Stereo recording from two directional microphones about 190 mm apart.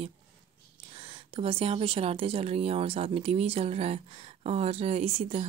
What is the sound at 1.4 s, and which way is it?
Speech, 30° right (ahead or behind).